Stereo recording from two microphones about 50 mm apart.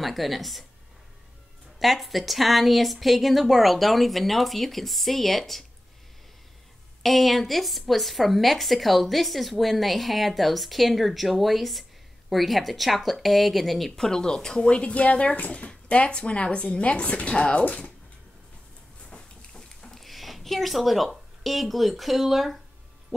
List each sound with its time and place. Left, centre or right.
0.0 s speech: centre
1.8 s speech: centre
7.0 s a woman's voice: centre; by 17.9 s left
19.0 s a sound: centre
20.0 s a woman's voice: centre